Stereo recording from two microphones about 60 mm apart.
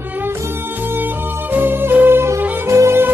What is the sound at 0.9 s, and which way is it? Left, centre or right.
Music, right.